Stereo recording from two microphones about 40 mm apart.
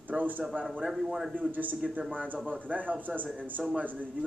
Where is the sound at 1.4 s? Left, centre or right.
Right.